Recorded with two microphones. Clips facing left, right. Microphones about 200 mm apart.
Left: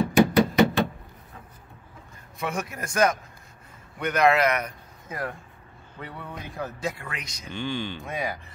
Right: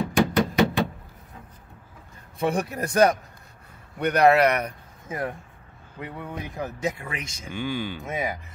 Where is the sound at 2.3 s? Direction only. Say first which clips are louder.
Right 6 dB; 30° right (ahead or behind).